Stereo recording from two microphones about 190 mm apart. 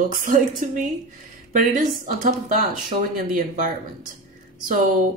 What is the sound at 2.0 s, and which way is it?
Speech, 45° right (ahead or behind).